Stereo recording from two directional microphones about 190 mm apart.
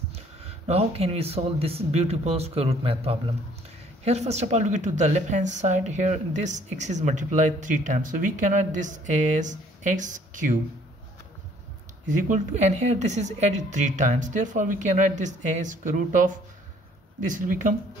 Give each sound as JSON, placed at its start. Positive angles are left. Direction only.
{"t": 0.1, "sound": "a woman's voice", "side_deg": -35}
{"t": 12.1, "sound": "a woman's voice", "side_deg": -40}